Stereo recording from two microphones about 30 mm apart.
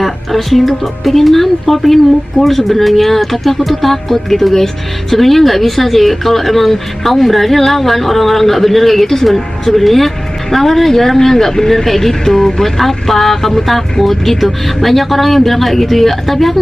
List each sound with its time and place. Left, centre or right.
0.0 s speech: centre